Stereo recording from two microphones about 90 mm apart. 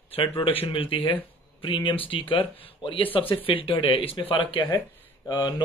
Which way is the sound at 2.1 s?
85° left.